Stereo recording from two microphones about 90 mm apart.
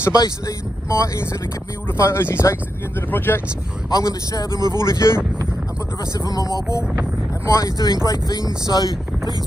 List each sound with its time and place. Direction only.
0.1 s speech: 40° left (ahead or behind); by 3.4 s 25° left (ahead or behind)
3.9 s a man's voice: 45° left (ahead or behind)
4.5 s speech: 50° right (ahead or behind)
4.7 s speech: 35° left (ahead or behind)
6.1 s a man's voice: 45° left (ahead or behind)